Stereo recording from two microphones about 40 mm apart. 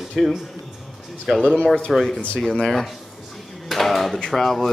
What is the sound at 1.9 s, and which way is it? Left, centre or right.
Speech, centre.